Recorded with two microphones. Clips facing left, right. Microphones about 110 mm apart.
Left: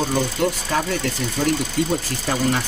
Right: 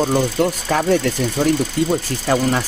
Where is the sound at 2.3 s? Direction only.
45° right (ahead or behind).